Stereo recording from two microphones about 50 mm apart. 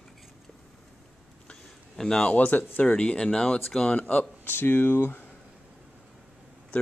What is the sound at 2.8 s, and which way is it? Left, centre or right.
Speech, centre.